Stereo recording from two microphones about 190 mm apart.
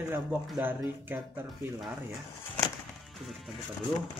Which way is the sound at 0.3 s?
5° right (ahead or behind).